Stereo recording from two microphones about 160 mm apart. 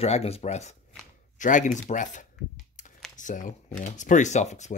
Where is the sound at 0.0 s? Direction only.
40° left (ahead or behind).